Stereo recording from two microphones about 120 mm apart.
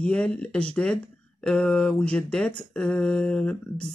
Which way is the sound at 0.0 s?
10° left (ahead or behind).